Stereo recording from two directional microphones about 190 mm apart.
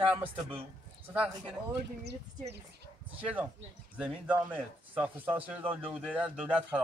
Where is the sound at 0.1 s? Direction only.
10° right (ahead or behind).